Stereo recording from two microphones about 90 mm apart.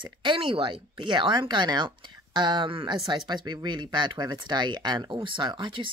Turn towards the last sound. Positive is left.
turn(degrees=-65)  # may be behind; listen again after turning